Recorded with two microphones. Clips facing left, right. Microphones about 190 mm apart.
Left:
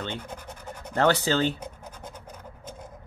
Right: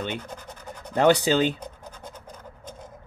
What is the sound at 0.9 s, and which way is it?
Speech, 15° right (ahead or behind).